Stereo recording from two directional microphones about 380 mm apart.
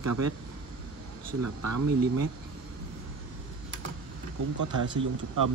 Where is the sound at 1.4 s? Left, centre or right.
Right.